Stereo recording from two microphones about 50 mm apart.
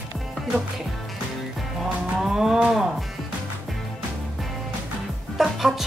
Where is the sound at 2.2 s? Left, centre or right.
Centre.